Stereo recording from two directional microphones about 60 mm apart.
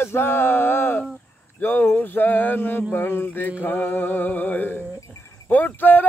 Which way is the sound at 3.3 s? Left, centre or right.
Left.